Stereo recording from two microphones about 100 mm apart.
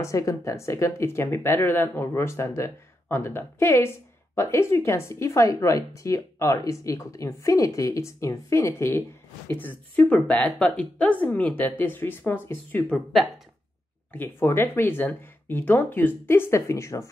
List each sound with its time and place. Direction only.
0.0 s a woman's voice: 35° left (ahead or behind)
12.9 s speech: centre (ahead or behind)
14.1 s speech: 20° left (ahead or behind)